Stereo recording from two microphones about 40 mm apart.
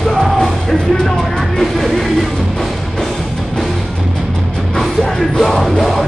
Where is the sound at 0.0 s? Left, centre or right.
Centre.